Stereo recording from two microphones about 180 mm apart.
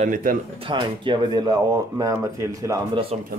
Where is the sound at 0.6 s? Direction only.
25° right (ahead or behind).